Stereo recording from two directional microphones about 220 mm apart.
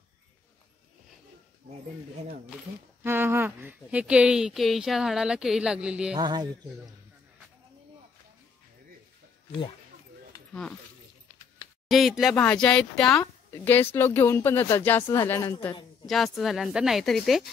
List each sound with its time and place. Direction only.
3.0 s speech: 10° right (ahead or behind)
6.1 s speech: 20° right (ahead or behind)
10.5 s speech: 5° left (ahead or behind)
11.9 s speech: centre (ahead or behind)